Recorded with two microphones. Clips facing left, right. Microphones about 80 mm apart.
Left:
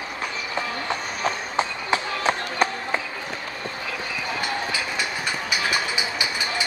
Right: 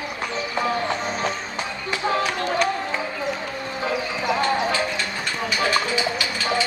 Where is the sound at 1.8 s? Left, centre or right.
Left.